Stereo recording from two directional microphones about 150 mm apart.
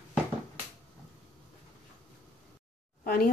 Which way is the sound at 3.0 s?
80° left.